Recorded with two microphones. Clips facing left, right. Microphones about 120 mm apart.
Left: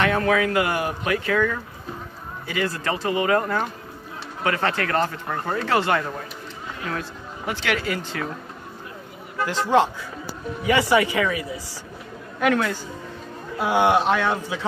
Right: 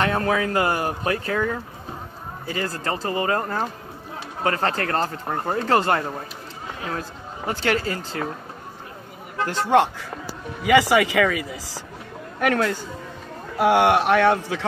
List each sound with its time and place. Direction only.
0.0 s a man's voice: 35° right (ahead or behind)
5.8 s a man's voice: 45° right (ahead or behind)
9.5 s speech: 55° right (ahead or behind)
10.6 s speech: 90° right
13.6 s speech: 70° right (ahead or behind)